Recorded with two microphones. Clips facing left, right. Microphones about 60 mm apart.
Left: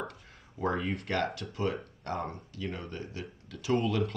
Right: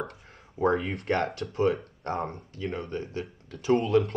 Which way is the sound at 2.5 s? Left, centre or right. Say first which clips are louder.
Right 4 dB; right.